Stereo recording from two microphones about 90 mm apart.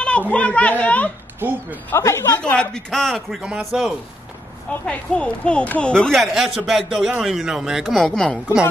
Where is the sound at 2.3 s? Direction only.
15° left (ahead or behind).